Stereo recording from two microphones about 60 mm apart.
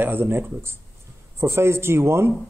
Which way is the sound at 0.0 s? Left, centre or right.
Right.